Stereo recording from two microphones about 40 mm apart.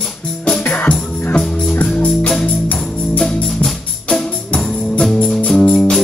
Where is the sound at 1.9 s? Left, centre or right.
Left.